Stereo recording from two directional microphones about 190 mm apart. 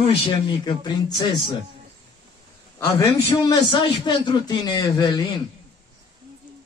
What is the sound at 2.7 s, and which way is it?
A man's voice, 20° left (ahead or behind).